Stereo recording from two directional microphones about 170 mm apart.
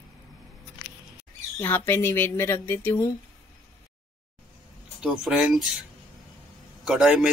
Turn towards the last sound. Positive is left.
turn(degrees=-5)  # may be behind; listen again after turning